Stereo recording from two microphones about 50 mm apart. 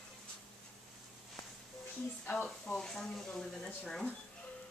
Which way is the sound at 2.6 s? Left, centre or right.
Centre.